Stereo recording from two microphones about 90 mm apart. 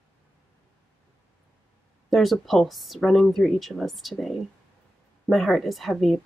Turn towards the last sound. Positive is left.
turn(degrees=0)  # may be behind; listen again after turning